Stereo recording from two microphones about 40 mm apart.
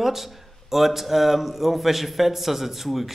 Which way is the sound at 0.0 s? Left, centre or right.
Centre.